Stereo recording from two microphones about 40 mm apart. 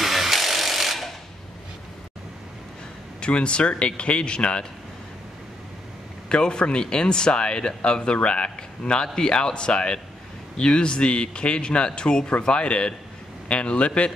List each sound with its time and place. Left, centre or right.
0.0 s wood: centre
3.2 s speech: left
6.2 s speech: left